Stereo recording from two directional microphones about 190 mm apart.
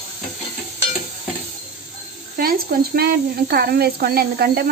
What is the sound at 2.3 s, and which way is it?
Speech, 50° right (ahead or behind).